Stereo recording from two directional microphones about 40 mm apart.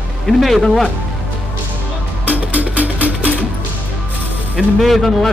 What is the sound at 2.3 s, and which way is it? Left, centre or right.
Music, right.